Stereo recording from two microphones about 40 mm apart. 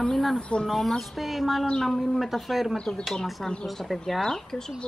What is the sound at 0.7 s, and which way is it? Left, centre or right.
Speech, centre.